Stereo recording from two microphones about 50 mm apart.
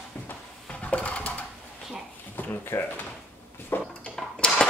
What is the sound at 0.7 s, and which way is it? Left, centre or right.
Sewing machine, left.